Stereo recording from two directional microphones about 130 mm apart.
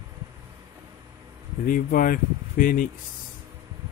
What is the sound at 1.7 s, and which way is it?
Speech, 90° left.